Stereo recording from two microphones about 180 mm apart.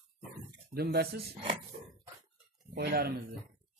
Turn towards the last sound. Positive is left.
turn(degrees=-65)  # may be behind; listen again after turning